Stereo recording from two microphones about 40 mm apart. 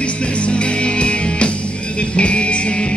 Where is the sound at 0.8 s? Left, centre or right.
Left.